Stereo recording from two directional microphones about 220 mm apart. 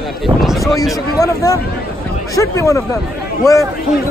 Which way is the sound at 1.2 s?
15° left (ahead or behind).